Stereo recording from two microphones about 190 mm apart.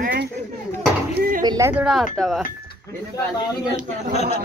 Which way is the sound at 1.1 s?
55° right (ahead or behind).